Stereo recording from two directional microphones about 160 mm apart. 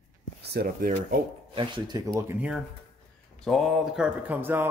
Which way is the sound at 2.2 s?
10° right (ahead or behind).